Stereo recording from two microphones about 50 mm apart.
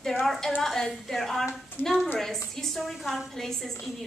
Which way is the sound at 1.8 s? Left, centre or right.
Left.